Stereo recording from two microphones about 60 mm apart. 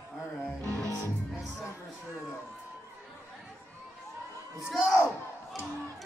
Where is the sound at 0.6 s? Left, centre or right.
Right.